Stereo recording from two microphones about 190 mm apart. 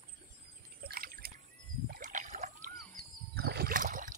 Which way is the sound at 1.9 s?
40° right (ahead or behind).